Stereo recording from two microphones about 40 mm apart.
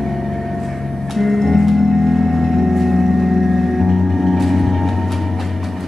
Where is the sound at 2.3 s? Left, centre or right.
Centre.